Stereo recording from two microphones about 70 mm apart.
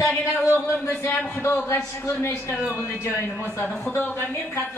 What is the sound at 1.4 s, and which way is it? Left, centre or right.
A man's voice, left.